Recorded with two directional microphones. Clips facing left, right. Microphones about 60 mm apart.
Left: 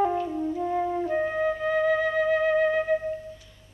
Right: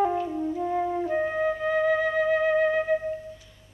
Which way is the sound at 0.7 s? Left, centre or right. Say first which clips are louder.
Even; right.